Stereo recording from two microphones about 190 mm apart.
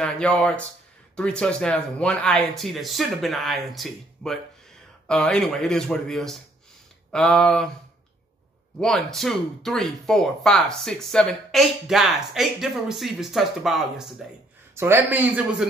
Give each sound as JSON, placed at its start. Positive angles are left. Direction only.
{"t": 0.0, "sound": "speech", "side_deg": 5}
{"t": 8.7, "sound": "speech", "side_deg": 0}
{"t": 14.8, "sound": "a man's voice", "side_deg": -15}